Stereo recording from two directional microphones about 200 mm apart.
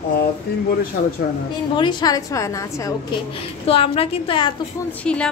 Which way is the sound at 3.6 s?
30° left (ahead or behind).